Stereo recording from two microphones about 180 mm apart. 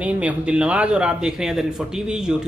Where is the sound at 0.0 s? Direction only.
5° right (ahead or behind).